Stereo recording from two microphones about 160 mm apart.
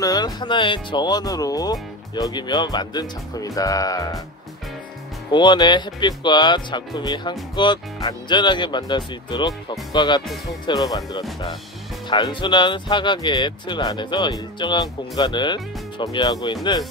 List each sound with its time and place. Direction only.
0.0 s speech: 25° left (ahead or behind)
5.3 s speech: 30° left (ahead or behind)
10.2 s speech: centre (ahead or behind)
10.9 s speech: 25° left (ahead or behind)